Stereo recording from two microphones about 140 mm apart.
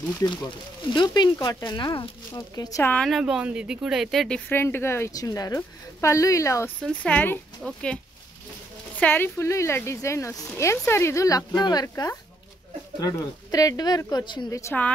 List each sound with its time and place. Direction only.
0.9 s speech: 30° left (ahead or behind)
2.8 s speech: 10° left (ahead or behind)
3.1 s speech: 5° right (ahead or behind)
4.5 s speech: 15° left (ahead or behind)
6.8 s speech: 10° left (ahead or behind)
9.0 s speech: 15° left (ahead or behind); by 14.5 s 35° left (ahead or behind)
14.5 s speech: 20° left (ahead or behind)